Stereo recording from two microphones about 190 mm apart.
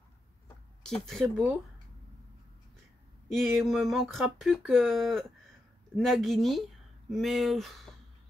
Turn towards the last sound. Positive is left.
turn(degrees=0)  # may be behind; listen again after turning